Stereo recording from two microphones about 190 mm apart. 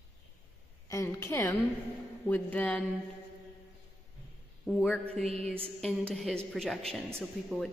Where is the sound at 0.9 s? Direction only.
15° left (ahead or behind).